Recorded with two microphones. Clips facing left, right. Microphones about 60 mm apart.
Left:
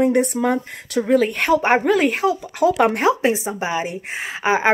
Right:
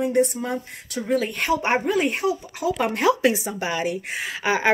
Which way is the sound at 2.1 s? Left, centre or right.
Left.